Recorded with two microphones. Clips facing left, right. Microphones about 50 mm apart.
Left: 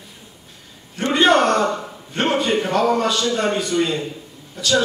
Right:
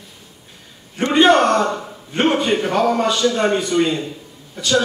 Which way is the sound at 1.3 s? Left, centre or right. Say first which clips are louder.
Right 1 dB; centre.